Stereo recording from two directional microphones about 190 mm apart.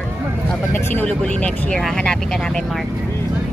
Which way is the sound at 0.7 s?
10° left (ahead or behind).